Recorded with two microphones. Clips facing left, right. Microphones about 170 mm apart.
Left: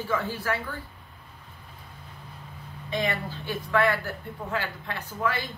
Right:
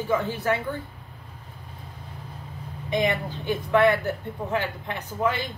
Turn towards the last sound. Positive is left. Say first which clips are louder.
# right 3 dB
turn(degrees=-20)  # may be behind; listen again after turning